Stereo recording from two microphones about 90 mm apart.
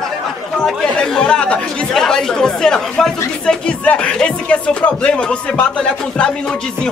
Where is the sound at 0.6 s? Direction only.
5° left (ahead or behind).